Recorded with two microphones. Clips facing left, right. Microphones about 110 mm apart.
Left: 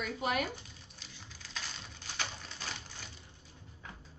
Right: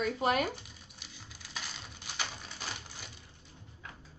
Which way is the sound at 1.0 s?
10° right (ahead or behind).